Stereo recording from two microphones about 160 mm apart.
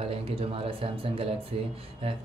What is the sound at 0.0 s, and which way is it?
Speech, 35° right (ahead or behind).